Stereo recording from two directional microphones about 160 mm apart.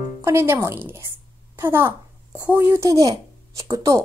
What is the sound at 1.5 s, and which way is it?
A woman's voice, 15° right (ahead or behind).